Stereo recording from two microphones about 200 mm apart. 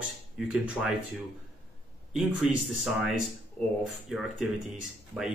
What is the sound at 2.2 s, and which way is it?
Speech, centre (ahead or behind).